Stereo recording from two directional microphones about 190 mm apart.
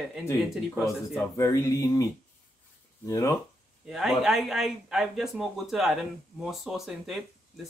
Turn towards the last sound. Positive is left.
turn(degrees=0)  # may be behind; listen again after turning